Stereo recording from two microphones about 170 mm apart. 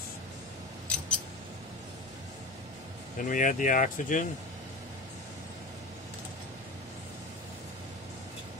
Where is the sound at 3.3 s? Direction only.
50° left (ahead or behind).